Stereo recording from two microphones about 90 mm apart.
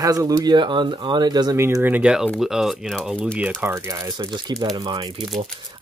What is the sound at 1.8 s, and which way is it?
Speech, 20° right (ahead or behind).